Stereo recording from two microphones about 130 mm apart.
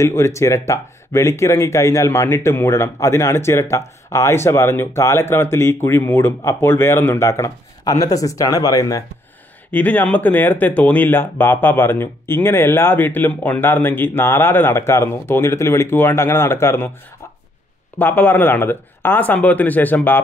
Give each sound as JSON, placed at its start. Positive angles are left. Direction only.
{"t": 0.0, "sound": "speech", "side_deg": 20}
{"t": 9.7, "sound": "speech", "side_deg": 10}
{"t": 17.9, "sound": "speech", "side_deg": 15}